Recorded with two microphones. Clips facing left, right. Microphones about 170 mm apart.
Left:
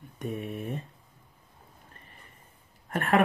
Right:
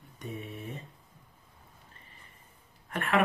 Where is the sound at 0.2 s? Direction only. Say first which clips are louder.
Left 6 dB; 50° left (ahead or behind).